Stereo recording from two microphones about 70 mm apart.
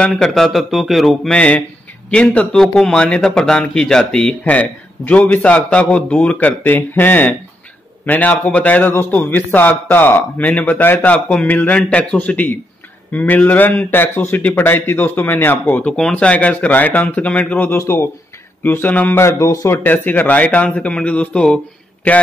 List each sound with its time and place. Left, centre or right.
0.0 s a man's voice: centre
1.3 s speech: centre
2.5 s a man's voice: centre
4.5 s a man's voice: left
17.7 s speech: left
18.6 s a man's voice: left
19.2 s speech: left
19.8 s a man's voice: left